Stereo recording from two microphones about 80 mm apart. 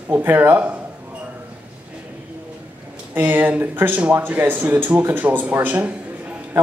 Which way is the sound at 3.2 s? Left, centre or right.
Right.